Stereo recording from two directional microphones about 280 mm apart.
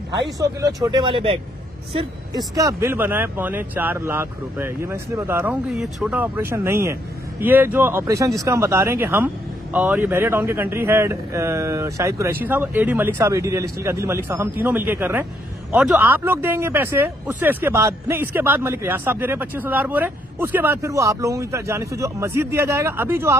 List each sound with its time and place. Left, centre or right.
0.8 s speech: centre